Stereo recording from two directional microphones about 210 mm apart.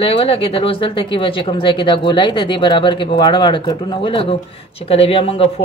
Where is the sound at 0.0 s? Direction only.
25° left (ahead or behind).